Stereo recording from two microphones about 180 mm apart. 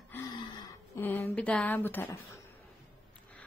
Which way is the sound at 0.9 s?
10° left (ahead or behind).